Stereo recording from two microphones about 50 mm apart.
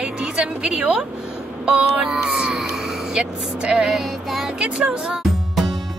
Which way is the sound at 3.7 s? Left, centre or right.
Centre.